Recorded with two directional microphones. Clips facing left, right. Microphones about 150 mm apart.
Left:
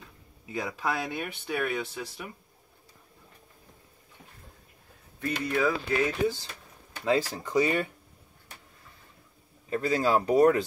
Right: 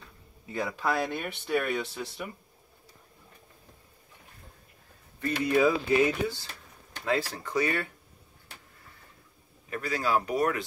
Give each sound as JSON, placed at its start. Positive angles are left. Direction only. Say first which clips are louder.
{"t": 0.5, "sound": "speech", "louder": "right 1 dB", "side_deg": 0}
{"t": 5.5, "sound": "a sound", "louder": "right 4 dB", "side_deg": -15}
{"t": 7.1, "sound": "speech", "louder": "left 3 dB", "side_deg": 15}
{"t": 9.7, "sound": "speech", "louder": "left 4 dB", "side_deg": 25}